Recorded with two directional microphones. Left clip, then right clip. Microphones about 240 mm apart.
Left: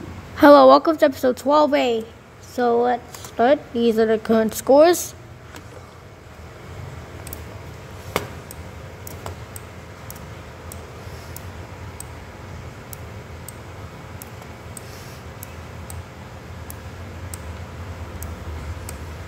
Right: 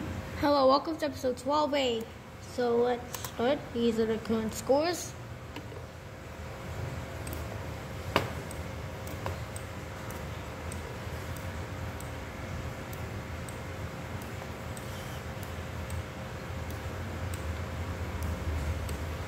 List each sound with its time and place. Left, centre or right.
0.4 s a woman's voice: left